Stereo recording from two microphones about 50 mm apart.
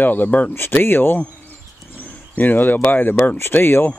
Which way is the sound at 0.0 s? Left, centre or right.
Left.